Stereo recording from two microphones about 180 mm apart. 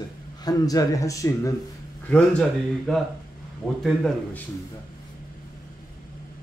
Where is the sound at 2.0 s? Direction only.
5° left (ahead or behind).